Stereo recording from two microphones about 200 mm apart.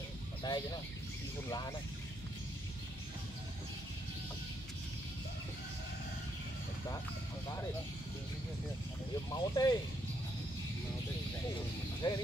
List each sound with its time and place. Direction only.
0.4 s a sound: 20° left (ahead or behind)
9.3 s speech: 20° left (ahead or behind)
12.0 s speech: 20° left (ahead or behind)